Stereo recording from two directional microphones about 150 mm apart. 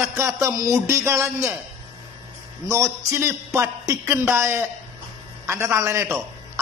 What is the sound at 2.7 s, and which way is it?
A man's voice, 20° right (ahead or behind).